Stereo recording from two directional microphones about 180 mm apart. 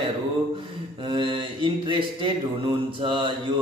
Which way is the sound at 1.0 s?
25° right (ahead or behind).